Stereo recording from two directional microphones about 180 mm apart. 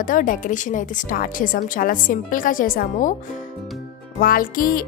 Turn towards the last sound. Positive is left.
turn(degrees=50)  # may be behind; listen again after turning